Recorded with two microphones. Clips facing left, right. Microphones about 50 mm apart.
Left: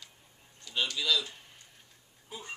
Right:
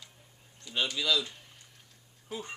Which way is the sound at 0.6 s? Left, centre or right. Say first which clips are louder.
Right 1 dB; centre.